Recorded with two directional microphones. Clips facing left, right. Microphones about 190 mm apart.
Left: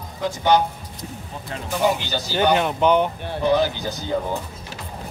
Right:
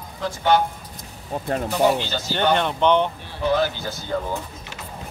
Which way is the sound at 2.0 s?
15° left (ahead or behind).